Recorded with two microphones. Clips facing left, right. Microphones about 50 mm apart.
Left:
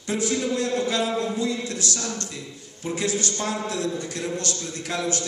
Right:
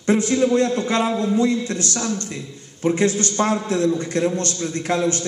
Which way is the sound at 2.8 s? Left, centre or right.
Right.